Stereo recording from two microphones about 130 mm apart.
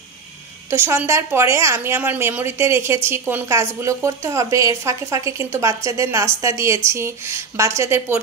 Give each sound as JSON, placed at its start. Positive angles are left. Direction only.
{"t": 0.7, "sound": "a woman's voice", "side_deg": -20}